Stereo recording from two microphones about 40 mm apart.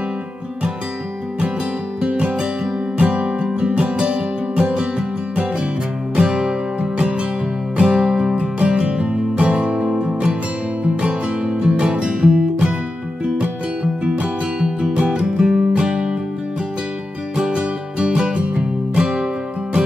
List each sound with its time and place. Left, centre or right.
2.0 s music: right
6.1 s music: centre
15.0 s music: right
17.4 s music: right